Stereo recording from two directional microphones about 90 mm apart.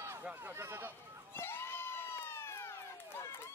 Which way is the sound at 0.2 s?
20° right (ahead or behind).